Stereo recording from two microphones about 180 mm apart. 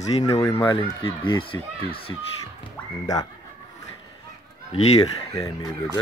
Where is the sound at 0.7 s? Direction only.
25° left (ahead or behind).